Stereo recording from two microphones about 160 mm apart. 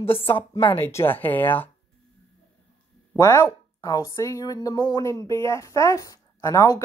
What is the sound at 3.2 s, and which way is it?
Speech, 20° left (ahead or behind).